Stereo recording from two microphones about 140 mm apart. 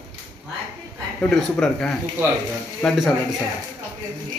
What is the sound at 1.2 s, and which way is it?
Speech, 5° left (ahead or behind).